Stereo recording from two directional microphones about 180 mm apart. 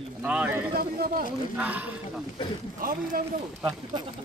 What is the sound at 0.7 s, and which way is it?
Speech, 60° right (ahead or behind).